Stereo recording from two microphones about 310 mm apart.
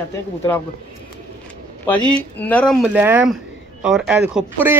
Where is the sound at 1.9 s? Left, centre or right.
Centre.